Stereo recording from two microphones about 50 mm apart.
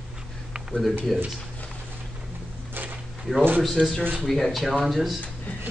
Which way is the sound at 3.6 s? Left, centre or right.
Centre.